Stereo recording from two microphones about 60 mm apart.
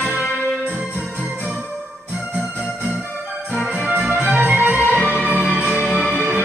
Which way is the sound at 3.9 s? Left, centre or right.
Right.